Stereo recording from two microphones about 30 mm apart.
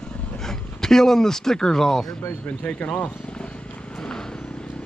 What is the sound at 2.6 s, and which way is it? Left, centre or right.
Speech, left.